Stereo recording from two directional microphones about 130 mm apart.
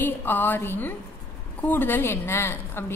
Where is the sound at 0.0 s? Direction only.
15° left (ahead or behind).